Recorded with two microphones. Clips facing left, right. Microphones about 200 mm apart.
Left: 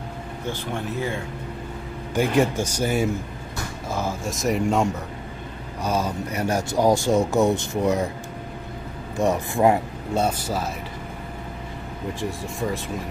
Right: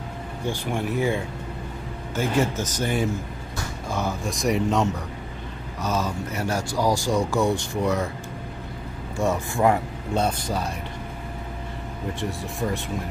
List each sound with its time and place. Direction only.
0.5 s speech: 15° right (ahead or behind)
2.1 s speech: 15° left (ahead or behind)
5.8 s speech: 10° left (ahead or behind)
9.2 s speech: 15° left (ahead or behind)
12.2 s speech: centre (ahead or behind)